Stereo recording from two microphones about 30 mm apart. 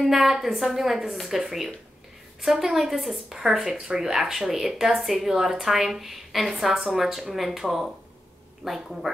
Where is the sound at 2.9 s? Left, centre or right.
Centre.